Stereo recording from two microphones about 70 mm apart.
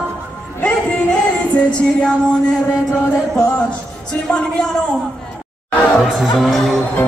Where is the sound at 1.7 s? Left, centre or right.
Centre.